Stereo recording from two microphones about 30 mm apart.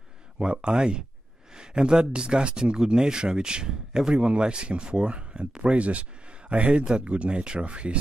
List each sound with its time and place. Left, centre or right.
0.4 s speech: right
4.1 s speech: right
6.8 s speech: right